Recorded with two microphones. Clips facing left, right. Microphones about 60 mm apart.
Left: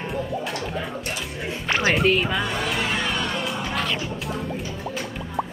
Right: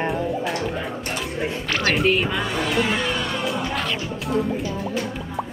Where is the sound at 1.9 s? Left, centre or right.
Centre.